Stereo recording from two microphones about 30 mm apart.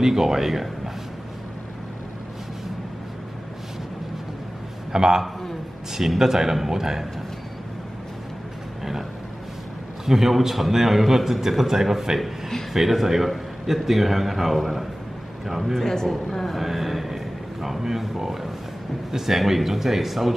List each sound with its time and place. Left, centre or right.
0.0 s a man's voice: centre
4.9 s a man's voice: right
10.0 s a man's voice: centre
12.2 s a man's voice: centre
12.7 s a man's voice: centre
15.8 s a woman's voice: centre
16.5 s a man's voice: centre